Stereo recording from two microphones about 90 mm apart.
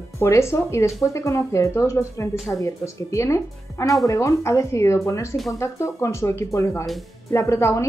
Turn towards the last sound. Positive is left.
turn(degrees=30)  # may be behind; listen again after turning